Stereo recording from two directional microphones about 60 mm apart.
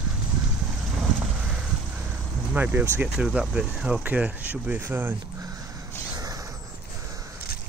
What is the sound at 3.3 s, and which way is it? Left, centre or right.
Speech, centre.